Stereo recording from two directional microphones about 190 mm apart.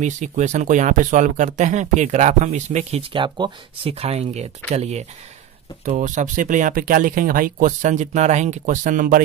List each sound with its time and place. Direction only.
0.0 s speech: 40° right (ahead or behind)